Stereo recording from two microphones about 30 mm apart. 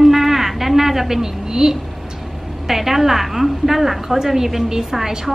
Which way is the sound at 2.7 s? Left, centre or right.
Centre.